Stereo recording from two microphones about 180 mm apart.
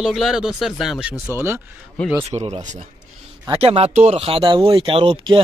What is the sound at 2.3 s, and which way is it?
Speech, 40° right (ahead or behind).